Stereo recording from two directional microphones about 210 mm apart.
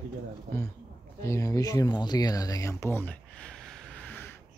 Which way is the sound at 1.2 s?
15° left (ahead or behind).